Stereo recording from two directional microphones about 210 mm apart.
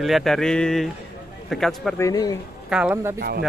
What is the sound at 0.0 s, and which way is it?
Speech, centre (ahead or behind).